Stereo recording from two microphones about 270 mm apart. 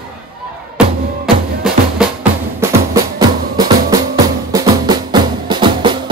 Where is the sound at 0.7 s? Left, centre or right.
Centre.